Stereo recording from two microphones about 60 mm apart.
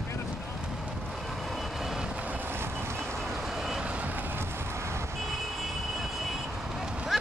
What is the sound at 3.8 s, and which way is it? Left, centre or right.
Vehicle, right.